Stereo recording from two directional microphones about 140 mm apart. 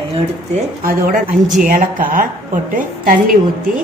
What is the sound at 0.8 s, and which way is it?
A woman's voice, 90° right.